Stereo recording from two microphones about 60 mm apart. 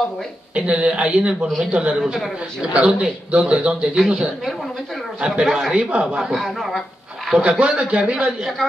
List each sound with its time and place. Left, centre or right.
0.6 s a man's voice: centre
5.2 s a man's voice: centre
6.3 s a man's voice: centre
7.2 s a man's voice: centre